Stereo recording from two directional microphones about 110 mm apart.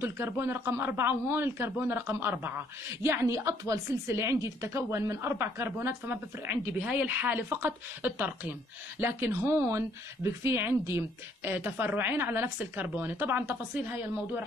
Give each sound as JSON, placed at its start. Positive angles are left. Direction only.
{"t": 0.0, "sound": "a woman's voice", "side_deg": -20}